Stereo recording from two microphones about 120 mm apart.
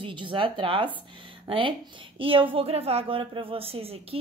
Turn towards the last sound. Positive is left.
turn(degrees=-55)  # may be behind; listen again after turning